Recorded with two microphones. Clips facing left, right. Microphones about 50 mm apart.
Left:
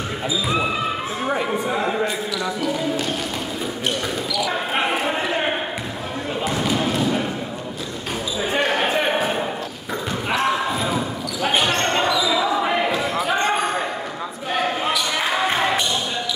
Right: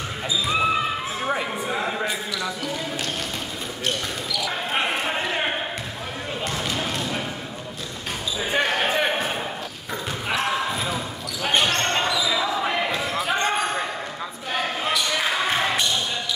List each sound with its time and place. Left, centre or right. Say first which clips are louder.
1.2 s speech: left 5 dB; centre
4.4 s basketball bounce: left 3 dB; centre
8.6 s a sound: left 3 dB; centre
10.3 s basketball bounce: left 3 dB; centre